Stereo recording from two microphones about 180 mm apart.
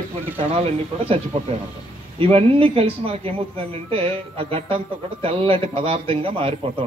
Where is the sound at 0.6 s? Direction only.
35° right (ahead or behind).